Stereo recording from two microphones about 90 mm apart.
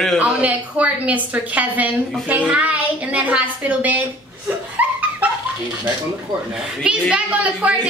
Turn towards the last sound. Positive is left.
turn(degrees=-15)  # may be behind; listen again after turning